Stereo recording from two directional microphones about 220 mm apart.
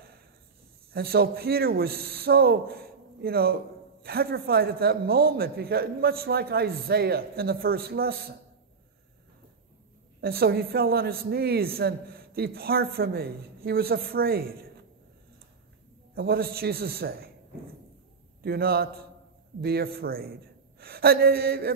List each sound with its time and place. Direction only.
0.9 s a man's voice: 45° right (ahead or behind)
10.2 s a man's voice: 45° right (ahead or behind)
16.2 s a man's voice: 45° right (ahead or behind)
18.4 s a man's voice: 45° right (ahead or behind)